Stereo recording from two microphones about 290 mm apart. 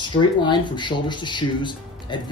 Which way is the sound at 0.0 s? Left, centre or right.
Centre.